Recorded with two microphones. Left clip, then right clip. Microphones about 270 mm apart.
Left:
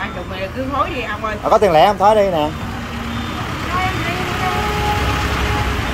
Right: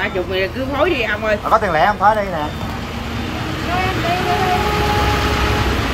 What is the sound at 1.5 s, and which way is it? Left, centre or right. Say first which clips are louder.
Speech: left 4 dB; left.